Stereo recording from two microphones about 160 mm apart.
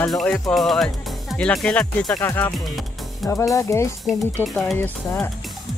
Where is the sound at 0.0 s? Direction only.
10° left (ahead or behind).